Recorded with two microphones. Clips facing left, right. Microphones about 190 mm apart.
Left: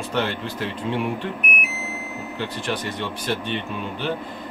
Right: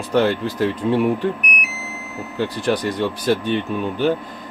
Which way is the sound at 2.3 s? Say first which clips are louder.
Right 8 dB; 35° right (ahead or behind).